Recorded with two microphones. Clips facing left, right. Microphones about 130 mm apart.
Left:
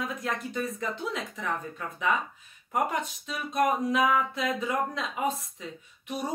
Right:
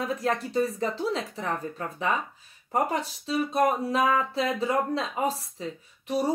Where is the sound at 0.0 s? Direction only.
35° right (ahead or behind).